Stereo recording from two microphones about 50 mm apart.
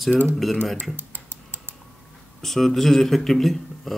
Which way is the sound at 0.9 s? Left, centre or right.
Right.